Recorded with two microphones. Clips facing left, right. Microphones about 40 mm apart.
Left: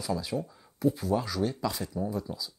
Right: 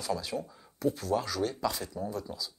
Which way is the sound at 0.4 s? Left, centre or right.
Centre.